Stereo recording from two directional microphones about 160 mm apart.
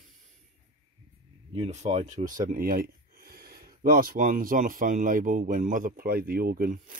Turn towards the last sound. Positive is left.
turn(degrees=-60)  # may be behind; listen again after turning